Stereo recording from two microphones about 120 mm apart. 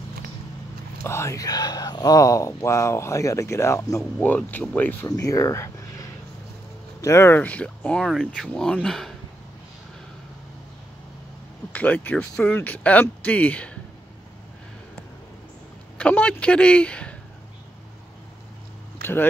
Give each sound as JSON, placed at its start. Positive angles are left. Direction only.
{"t": 1.0, "sound": "speech", "side_deg": 25}
{"t": 5.0, "sound": "speech", "side_deg": 30}
{"t": 11.7, "sound": "speech", "side_deg": 15}
{"t": 16.0, "sound": "speech", "side_deg": 10}